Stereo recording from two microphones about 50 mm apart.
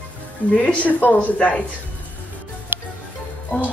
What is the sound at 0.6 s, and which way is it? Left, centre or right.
Speech, left.